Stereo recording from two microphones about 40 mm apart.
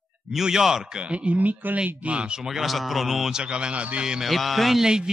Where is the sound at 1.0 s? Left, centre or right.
Right.